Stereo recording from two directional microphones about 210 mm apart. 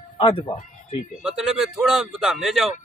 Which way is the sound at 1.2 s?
5° right (ahead or behind).